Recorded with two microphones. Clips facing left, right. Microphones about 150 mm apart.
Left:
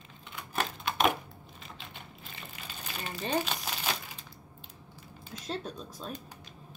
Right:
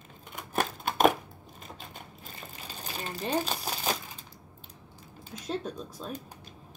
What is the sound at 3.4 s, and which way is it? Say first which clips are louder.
Crumpling: right 3 dB; 40° right (ahead or behind).